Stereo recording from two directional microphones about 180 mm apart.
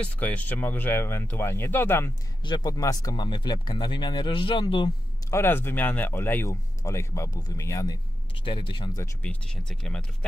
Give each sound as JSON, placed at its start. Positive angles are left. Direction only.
{"t": 0.0, "sound": "speech", "side_deg": 10}
{"t": 5.3, "sound": "speech", "side_deg": 10}
{"t": 8.5, "sound": "speech", "side_deg": 30}
{"t": 9.2, "sound": "speech", "side_deg": 5}